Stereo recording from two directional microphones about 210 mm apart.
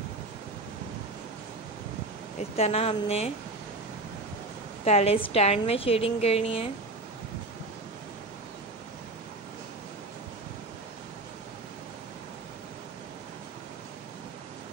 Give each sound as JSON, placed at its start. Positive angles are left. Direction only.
{"t": 2.5, "sound": "a woman's voice", "side_deg": 30}
{"t": 4.8, "sound": "a woman's voice", "side_deg": 30}